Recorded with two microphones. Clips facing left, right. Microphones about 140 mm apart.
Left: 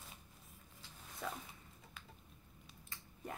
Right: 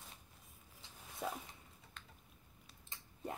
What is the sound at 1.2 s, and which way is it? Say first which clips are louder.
Zipper: right 3 dB; 20° right (ahead or behind).